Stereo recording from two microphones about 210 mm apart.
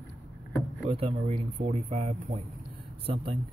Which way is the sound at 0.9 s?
30° right (ahead or behind).